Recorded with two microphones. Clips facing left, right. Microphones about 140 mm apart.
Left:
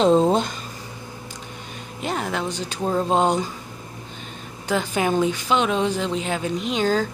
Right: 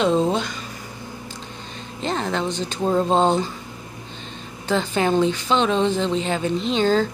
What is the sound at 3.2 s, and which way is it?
Speech, 10° left (ahead or behind).